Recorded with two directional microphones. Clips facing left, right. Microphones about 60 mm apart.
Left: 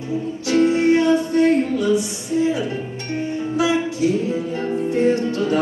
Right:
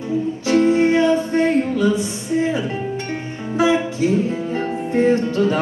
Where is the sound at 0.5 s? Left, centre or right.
Right.